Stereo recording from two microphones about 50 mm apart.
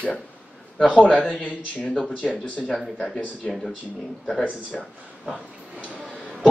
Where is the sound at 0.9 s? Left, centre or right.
Left.